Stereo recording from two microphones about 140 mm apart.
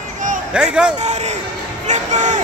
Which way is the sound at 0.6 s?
5° right (ahead or behind).